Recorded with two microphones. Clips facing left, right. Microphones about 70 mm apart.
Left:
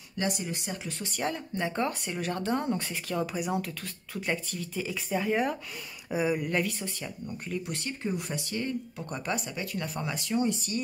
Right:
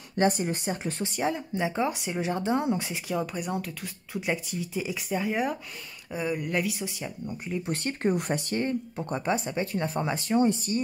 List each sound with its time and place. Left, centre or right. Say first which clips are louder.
0.2 s speech: right 7 dB; right
1.0 s speech: right 3 dB; centre
3.3 s speech: left 1 dB; centre
3.8 s speech: right 2 dB; centre
5.1 s speech: even; centre
6.1 s speech: left 2 dB; centre
6.4 s speech: right 1 dB; centre
7.2 s speech: right 2 dB; right
7.6 s speech: right 6 dB; right